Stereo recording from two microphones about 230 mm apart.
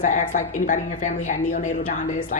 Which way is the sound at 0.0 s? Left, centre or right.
Left.